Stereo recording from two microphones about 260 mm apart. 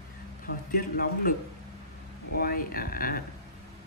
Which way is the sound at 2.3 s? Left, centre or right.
Left.